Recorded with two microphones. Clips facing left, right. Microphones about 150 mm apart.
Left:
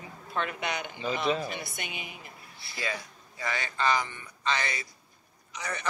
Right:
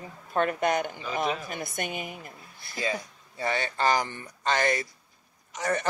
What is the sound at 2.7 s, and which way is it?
A man's voice, 20° right (ahead or behind).